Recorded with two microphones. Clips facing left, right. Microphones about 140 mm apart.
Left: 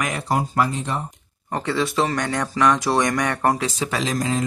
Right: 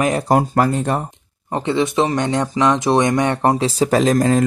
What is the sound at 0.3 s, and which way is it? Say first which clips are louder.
Speech: right 4 dB; 50° right (ahead or behind).